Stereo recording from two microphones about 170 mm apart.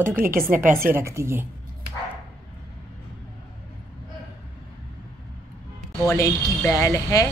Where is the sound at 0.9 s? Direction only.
15° right (ahead or behind).